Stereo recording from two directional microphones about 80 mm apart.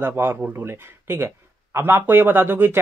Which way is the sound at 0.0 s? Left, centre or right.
Right.